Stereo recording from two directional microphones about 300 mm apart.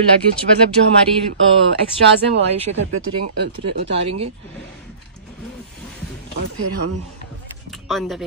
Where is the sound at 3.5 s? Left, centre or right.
Centre.